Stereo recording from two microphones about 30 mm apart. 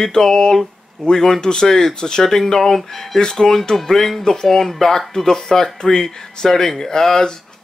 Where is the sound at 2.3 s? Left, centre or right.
Centre.